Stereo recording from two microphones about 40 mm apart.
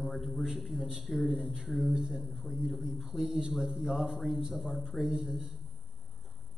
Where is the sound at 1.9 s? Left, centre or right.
Centre.